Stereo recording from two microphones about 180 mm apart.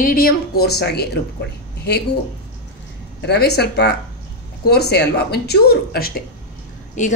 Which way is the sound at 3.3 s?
65° left (ahead or behind).